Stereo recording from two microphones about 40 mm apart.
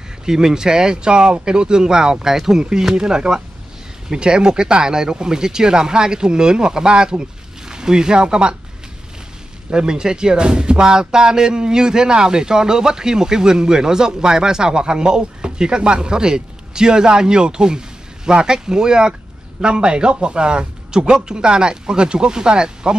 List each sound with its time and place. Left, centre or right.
0.2 s speech: centre
9.7 s speech: centre